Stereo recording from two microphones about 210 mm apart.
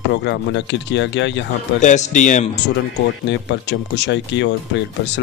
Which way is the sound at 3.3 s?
55° left (ahead or behind).